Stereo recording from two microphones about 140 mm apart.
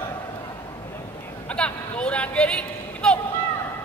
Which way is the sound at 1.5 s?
10° left (ahead or behind).